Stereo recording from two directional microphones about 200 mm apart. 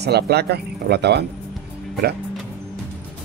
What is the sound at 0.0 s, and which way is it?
Speech, 55° right (ahead or behind).